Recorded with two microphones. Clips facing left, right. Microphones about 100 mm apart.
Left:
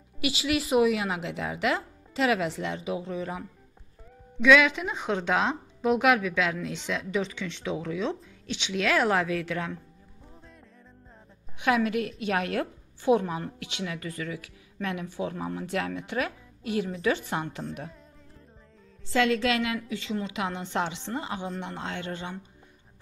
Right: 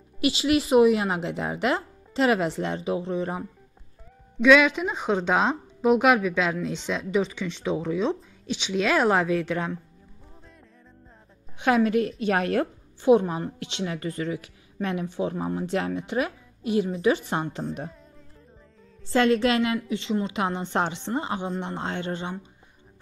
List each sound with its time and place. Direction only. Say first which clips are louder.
0.2 s a woman's voice: right 5 dB; 25° right (ahead or behind)
4.4 s a woman's voice: right 3 dB; 20° right (ahead or behind)
11.6 s a woman's voice: right 4 dB; 35° right (ahead or behind)
13.0 s a woman's voice: right 5 dB; 20° right (ahead or behind)
19.0 s a woman's voice: right 4 dB; 35° right (ahead or behind)